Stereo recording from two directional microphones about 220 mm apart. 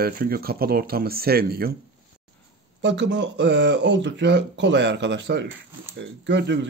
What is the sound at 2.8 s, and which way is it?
Speech, 55° right (ahead or behind).